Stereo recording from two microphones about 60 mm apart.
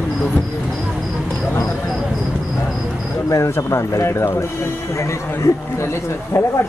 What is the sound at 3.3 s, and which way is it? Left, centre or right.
Speech, left.